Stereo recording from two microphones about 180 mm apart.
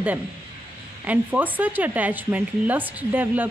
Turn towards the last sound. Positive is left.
turn(degrees=-10)  # may be behind; listen again after turning